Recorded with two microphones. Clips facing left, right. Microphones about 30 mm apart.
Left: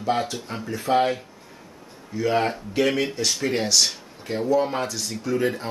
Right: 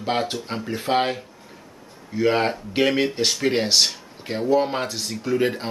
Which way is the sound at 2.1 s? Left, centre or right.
Right.